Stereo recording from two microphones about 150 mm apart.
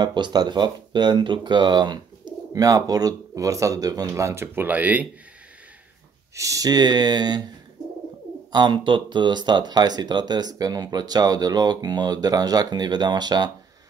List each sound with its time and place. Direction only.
0.0 s speech: 30° right (ahead or behind); by 5.0 s 10° right (ahead or behind)
6.3 s speech: 20° right (ahead or behind)
8.5 s speech: 30° right (ahead or behind)